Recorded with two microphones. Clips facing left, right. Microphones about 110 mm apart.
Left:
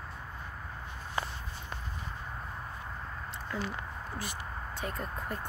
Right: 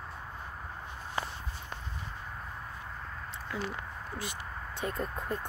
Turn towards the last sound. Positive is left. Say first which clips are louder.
# right 3 dB
turn(degrees=-25)  # may be behind; listen again after turning